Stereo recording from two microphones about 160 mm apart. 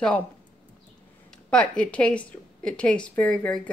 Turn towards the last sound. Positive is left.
turn(degrees=5)  # may be behind; listen again after turning